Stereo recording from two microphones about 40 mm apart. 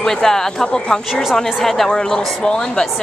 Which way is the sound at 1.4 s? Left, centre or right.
Centre.